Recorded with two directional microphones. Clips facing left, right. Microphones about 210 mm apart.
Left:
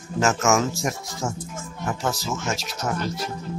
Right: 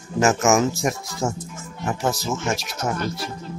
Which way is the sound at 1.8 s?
20° right (ahead or behind).